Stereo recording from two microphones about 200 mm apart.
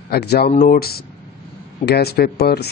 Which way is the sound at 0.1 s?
55° left (ahead or behind).